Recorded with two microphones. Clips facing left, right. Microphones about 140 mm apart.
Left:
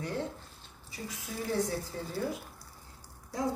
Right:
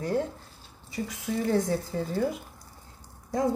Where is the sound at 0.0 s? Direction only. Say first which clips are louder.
Right 7 dB; 40° right (ahead or behind).